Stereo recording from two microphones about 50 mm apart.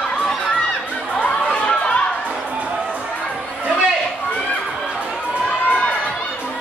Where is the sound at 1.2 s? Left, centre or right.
Left.